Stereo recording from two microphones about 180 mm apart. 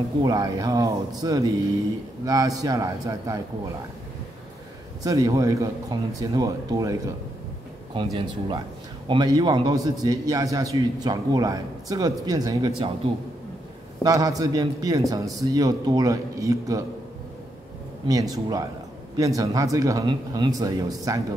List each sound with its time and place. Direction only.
0.2 s a man's voice: 20° right (ahead or behind)
5.0 s a man's voice: 20° right (ahead or behind)
14.0 s a man's voice: 20° right (ahead or behind)
18.0 s a man's voice: 20° right (ahead or behind)